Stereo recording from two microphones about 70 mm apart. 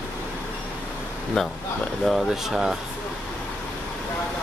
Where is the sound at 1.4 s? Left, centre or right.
Centre.